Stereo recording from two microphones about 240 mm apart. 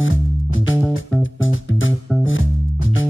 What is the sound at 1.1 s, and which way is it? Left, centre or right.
Music, left.